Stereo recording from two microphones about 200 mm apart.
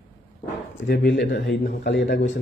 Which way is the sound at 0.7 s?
60° left (ahead or behind).